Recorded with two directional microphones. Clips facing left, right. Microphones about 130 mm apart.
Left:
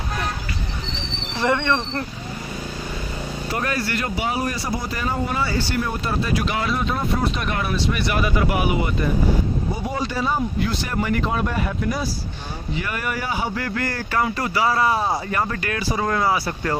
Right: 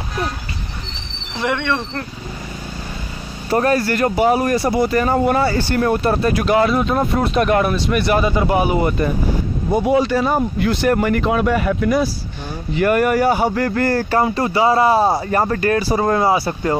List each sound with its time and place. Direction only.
1.4 s speech: centre (ahead or behind)
3.5 s speech: 40° right (ahead or behind)
8.2 s a man's voice: 30° right (ahead or behind)
9.8 s speech: 70° right (ahead or behind)
12.7 s speech: 55° right (ahead or behind); by 16.7 s 30° right (ahead or behind)